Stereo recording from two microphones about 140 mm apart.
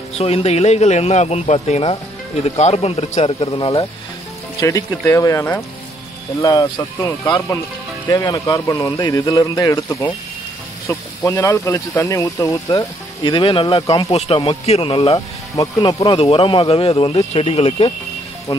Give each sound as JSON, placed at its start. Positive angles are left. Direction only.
{"t": 0.2, "sound": "speech", "side_deg": 50}
{"t": 4.6, "sound": "speech", "side_deg": 25}
{"t": 6.8, "sound": "speech", "side_deg": 15}
{"t": 15.1, "sound": "speech", "side_deg": 25}
{"t": 16.2, "sound": "speech", "side_deg": 40}